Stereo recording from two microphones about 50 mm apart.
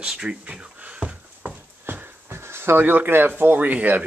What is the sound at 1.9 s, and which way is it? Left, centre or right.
Speech, right.